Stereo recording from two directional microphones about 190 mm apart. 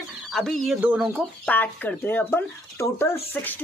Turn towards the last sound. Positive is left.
turn(degrees=10)  # may be behind; listen again after turning